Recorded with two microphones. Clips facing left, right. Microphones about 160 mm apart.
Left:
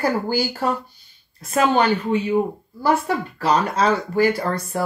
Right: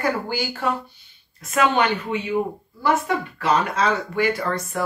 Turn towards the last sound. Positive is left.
turn(degrees=35)  # may be behind; listen again after turning